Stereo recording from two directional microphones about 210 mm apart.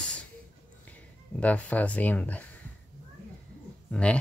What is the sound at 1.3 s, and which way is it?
Speech, 5° left (ahead or behind).